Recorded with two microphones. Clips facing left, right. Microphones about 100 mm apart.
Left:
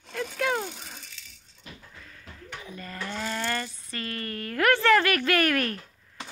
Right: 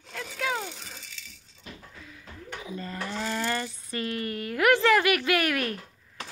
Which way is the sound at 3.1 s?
5° right (ahead or behind).